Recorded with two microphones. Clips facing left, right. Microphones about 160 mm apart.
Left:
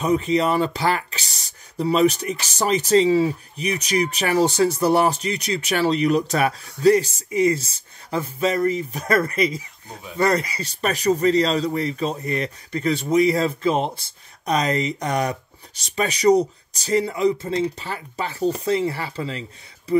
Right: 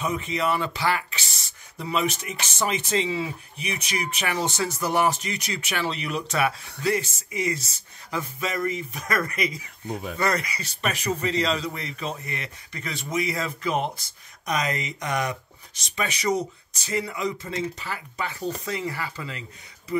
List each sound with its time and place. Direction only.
0.0 s speech: 35° left (ahead or behind)